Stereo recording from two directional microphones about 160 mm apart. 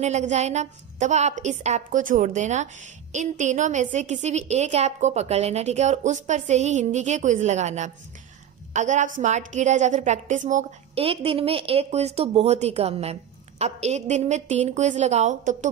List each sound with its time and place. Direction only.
0.0 s a woman's voice: 45° right (ahead or behind)
11.1 s speech: 35° right (ahead or behind)